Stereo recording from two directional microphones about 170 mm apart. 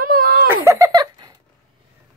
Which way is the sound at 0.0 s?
55° right (ahead or behind).